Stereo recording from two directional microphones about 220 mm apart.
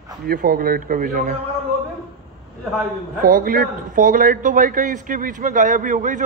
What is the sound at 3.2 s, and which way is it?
A man's voice, 40° right (ahead or behind).